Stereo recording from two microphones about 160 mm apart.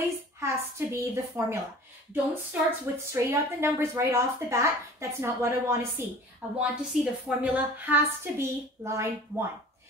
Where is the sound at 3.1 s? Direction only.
20° right (ahead or behind).